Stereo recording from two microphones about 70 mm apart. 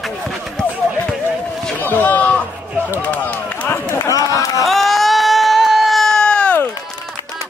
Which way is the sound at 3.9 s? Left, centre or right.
Left.